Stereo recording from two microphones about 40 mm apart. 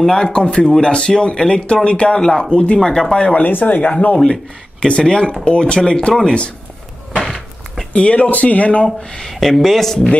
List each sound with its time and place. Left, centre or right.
0.0 s speech: centre
0.3 s speech: left
3.3 s speech: left
4.8 s speech: left
7.9 s speech: left
8.8 s speech: centre
9.3 s speech: centre